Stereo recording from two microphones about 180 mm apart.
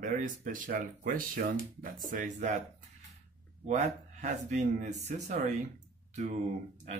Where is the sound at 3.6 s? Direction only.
40° right (ahead or behind).